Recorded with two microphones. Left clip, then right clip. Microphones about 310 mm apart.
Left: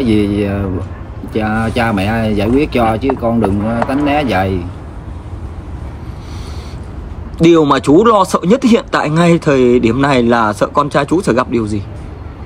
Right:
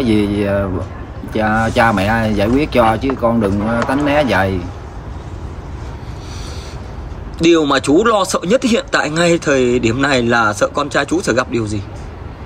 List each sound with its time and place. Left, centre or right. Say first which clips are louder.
0.0 s speech: left 2 dB; centre
7.3 s speech: left 3 dB; centre